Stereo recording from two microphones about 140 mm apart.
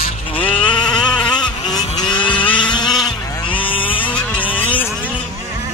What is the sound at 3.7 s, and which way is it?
Vehicle, 40° left (ahead or behind).